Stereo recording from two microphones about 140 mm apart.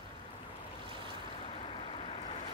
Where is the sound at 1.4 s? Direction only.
45° left (ahead or behind).